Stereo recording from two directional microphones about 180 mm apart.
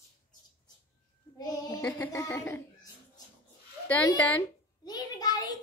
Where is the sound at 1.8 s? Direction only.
10° left (ahead or behind).